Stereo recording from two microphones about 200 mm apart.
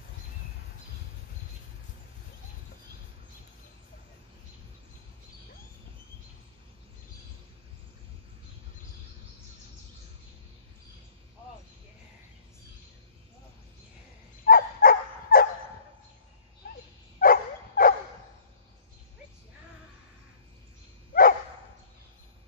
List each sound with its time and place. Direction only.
14.4 s dog: 45° left (ahead or behind)
17.2 s dog: 45° left (ahead or behind)
21.1 s dog: 45° left (ahead or behind)